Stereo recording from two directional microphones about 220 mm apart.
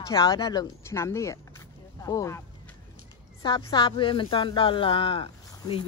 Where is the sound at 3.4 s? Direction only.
20° left (ahead or behind).